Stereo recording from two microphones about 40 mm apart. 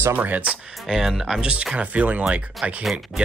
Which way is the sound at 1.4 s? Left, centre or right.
Right.